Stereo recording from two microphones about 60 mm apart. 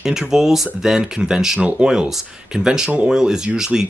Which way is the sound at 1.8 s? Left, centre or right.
Centre.